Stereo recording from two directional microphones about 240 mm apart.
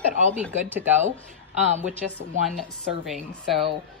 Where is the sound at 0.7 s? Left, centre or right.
Centre.